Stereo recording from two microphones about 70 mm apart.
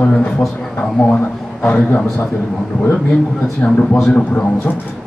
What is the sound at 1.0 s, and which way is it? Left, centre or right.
A man's voice, centre.